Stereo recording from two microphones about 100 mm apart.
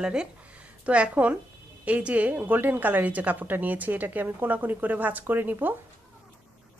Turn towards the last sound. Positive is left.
turn(degrees=-20)  # may be behind; listen again after turning